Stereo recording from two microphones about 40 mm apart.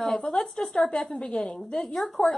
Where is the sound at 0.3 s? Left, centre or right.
Left.